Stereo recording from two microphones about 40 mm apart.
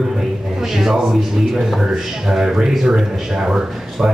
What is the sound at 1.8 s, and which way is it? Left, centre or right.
Speech, centre.